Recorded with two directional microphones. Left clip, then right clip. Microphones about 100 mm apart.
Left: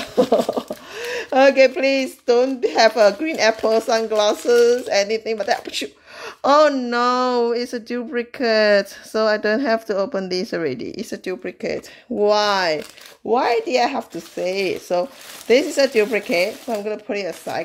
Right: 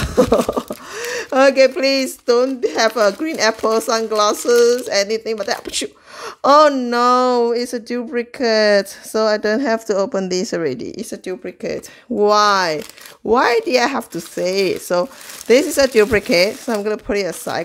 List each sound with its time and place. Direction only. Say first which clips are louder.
0.0 s speech: right 2 dB; 50° right (ahead or behind); by 11.7 s 15° right (ahead or behind)
12.2 s speech: right 4 dB; 40° right (ahead or behind)
13.3 s speech: right 4 dB; 60° right (ahead or behind)